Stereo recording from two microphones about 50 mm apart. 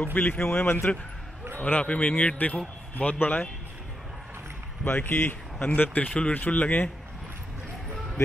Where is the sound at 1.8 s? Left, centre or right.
Left.